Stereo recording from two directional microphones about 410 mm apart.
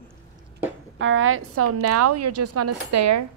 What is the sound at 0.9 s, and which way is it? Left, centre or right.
A woman's voice, right.